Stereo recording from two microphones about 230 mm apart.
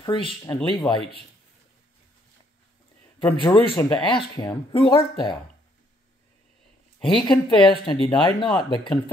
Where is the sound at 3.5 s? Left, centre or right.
Centre.